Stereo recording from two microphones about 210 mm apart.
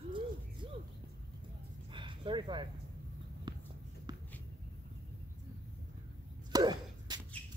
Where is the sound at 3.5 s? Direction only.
20° right (ahead or behind).